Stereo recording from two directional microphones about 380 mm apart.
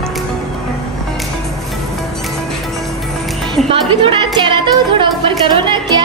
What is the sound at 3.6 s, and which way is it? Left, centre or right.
Speech, centre.